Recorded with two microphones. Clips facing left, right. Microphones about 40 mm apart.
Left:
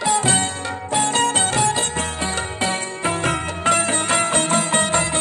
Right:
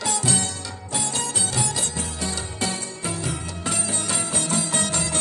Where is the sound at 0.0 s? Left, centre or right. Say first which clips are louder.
Left 6 dB; left.